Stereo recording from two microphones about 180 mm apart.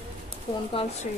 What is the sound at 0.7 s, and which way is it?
Speech, 35° left (ahead or behind).